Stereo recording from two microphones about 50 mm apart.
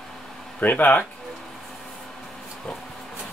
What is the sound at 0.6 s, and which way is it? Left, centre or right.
Speech, left.